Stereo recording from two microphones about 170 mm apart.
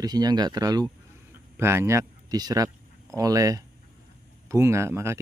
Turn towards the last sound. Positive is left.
turn(degrees=-15)  # may be behind; listen again after turning